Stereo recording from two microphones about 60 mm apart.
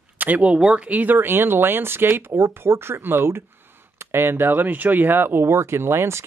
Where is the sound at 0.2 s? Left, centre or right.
Right.